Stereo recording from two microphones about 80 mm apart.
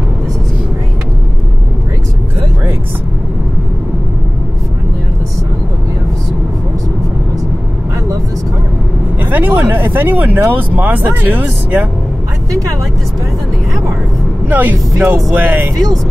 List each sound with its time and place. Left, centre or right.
9.2 s a sound: right
11.1 s speech: right
12.4 s speech: right
14.5 s speech: right
15.0 s speech: right
15.3 s speech: right